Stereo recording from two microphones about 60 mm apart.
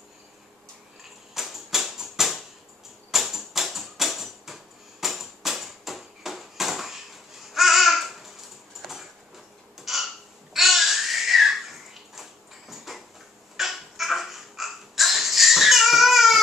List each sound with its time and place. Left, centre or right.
1.3 s music: centre
3.1 s typewriter: centre
5.0 s a sound: centre
7.5 s babbling: centre
9.8 s a sound: centre
10.5 s babbling: centre